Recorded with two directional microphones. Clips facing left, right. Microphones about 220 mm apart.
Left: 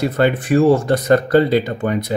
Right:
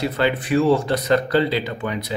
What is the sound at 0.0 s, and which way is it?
Speech, 50° left (ahead or behind).